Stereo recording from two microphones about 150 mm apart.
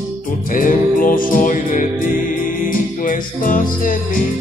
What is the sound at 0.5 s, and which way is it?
Music, 65° left (ahead or behind).